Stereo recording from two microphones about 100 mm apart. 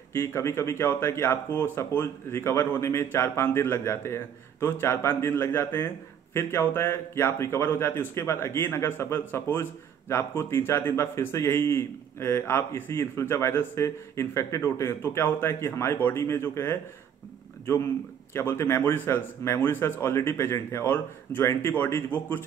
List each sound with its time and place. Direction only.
0.1 s a man's voice: 25° left (ahead or behind)
18.3 s a man's voice: 25° left (ahead or behind)